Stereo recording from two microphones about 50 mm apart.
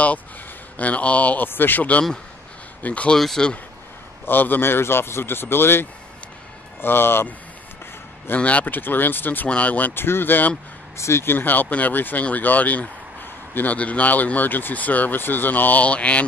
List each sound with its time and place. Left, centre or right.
0.7 s speech: left
1.4 s speech: left
3.2 s speech: centre
4.3 s a man's voice: left
8.4 s speech: left
9.5 s speech: left
9.9 s a man's voice: left
11.0 s speech: left
11.3 s speech: left